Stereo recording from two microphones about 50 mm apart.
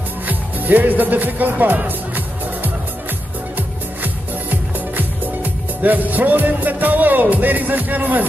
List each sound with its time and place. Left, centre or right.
0.3 s music: right